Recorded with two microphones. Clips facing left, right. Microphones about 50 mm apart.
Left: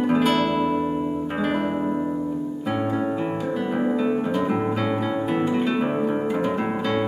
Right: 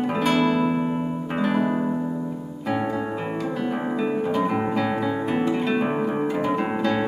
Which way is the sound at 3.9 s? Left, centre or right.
Centre.